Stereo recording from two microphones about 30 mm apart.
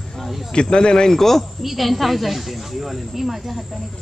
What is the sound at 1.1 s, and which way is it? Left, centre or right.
Speech, centre.